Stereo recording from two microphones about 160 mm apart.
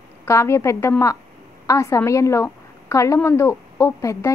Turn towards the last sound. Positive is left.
turn(degrees=20)  # may be behind; listen again after turning